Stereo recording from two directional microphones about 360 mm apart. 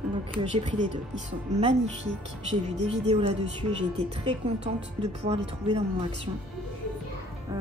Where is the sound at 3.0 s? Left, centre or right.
Centre.